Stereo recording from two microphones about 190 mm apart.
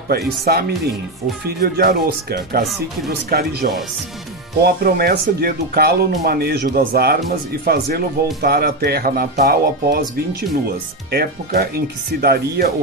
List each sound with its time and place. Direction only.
0.5 s speech: 55° right (ahead or behind)
11.5 s speech: 55° right (ahead or behind)